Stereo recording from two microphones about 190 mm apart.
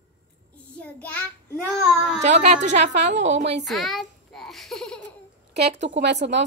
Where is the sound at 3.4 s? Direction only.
65° right (ahead or behind).